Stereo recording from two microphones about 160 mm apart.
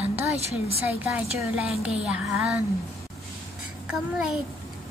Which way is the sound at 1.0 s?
10° right (ahead or behind).